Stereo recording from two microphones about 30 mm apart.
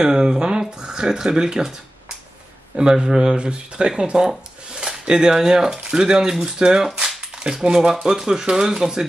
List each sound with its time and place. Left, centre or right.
0.0 s speech: right
2.7 s speech: right